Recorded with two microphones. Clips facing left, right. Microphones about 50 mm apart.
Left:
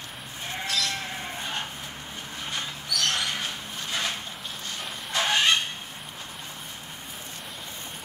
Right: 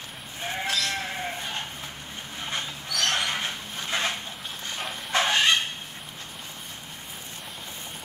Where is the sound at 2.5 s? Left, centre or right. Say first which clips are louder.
Even; right.